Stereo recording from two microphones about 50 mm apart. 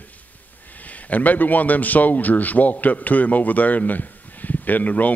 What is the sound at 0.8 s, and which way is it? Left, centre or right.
A man's voice, left.